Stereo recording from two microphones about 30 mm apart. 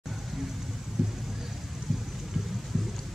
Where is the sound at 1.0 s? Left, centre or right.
Centre.